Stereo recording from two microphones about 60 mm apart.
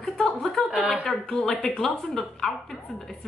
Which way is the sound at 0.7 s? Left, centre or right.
Centre.